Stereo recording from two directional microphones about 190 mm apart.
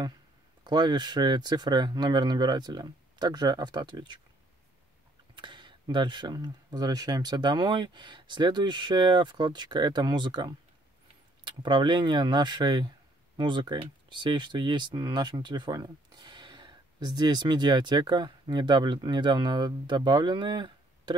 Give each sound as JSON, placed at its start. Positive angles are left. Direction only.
{"t": 0.7, "sound": "speech", "side_deg": -20}
{"t": 5.3, "sound": "speech", "side_deg": -25}